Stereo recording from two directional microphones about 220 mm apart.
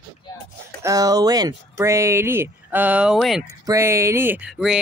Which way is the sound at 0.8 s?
15° right (ahead or behind).